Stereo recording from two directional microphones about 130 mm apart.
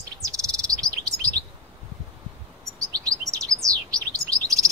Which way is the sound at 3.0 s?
25° right (ahead or behind).